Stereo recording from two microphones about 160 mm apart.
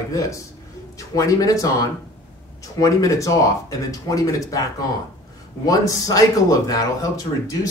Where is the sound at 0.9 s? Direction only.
20° left (ahead or behind).